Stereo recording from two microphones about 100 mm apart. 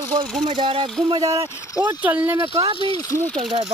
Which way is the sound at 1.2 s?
35° right (ahead or behind).